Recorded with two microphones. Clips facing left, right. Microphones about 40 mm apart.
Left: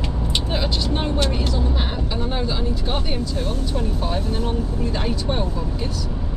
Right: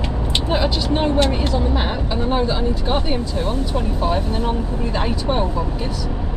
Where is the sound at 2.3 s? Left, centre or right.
Centre.